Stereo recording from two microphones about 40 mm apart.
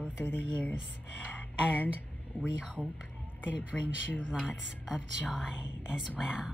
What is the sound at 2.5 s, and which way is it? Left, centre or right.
Speech, right.